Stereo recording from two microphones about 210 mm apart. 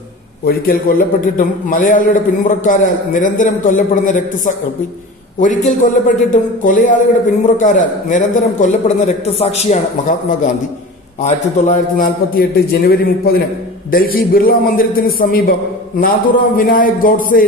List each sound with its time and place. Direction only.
0.5 s a man's voice: 45° left (ahead or behind)
16.5 s a man's voice: 40° left (ahead or behind)